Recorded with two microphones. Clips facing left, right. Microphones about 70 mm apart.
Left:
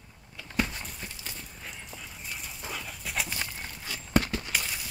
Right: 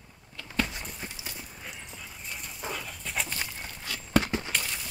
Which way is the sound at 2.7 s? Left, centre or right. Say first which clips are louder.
Left 1 dB; centre.